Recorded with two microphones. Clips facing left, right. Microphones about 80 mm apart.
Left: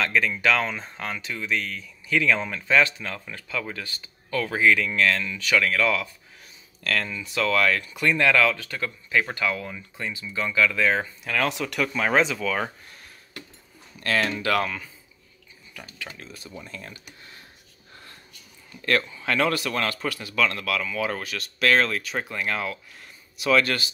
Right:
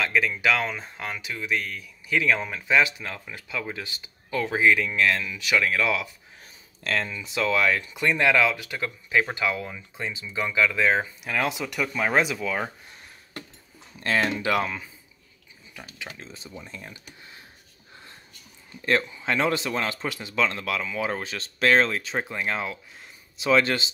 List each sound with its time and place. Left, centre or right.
0.0 s speech: centre
13.9 s speech: right
18.8 s speech: centre